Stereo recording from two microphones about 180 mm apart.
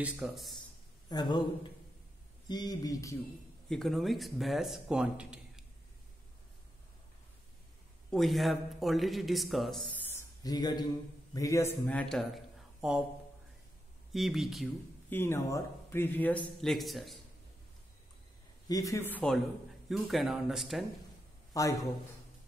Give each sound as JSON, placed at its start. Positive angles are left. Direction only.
{"t": 0.0, "sound": "a man's voice", "side_deg": 0}
{"t": 1.0, "sound": "speech", "side_deg": 25}
{"t": 3.6, "sound": "a man's voice", "side_deg": 0}
{"t": 8.1, "sound": "a man's voice", "side_deg": 0}
{"t": 14.1, "sound": "a man's voice", "side_deg": 0}
{"t": 15.0, "sound": "a man's voice", "side_deg": 15}
{"t": 18.7, "sound": "a man's voice", "side_deg": 20}
{"t": 21.5, "sound": "a man's voice", "side_deg": 20}